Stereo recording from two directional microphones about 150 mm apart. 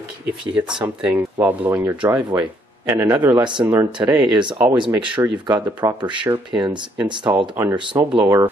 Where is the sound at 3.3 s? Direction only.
30° right (ahead or behind).